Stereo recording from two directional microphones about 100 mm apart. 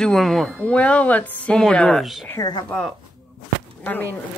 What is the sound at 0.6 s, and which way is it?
A woman's voice, 10° left (ahead or behind).